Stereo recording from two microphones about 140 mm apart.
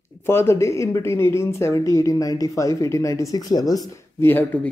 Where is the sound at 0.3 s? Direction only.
20° left (ahead or behind).